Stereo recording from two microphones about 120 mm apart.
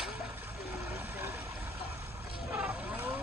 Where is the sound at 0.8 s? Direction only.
15° right (ahead or behind).